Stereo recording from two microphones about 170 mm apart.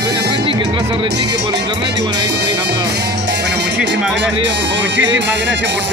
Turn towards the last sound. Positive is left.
turn(degrees=-90)